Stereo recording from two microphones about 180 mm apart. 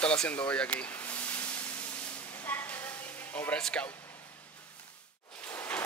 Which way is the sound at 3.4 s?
5° left (ahead or behind).